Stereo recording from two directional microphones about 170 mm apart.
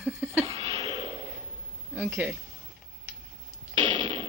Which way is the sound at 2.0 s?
10° right (ahead or behind).